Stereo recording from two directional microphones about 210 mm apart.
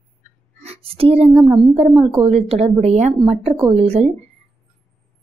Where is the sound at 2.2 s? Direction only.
30° right (ahead or behind).